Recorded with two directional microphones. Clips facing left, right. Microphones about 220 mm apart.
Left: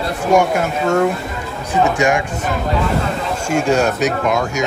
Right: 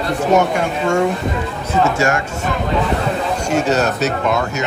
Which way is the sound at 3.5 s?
10° left (ahead or behind).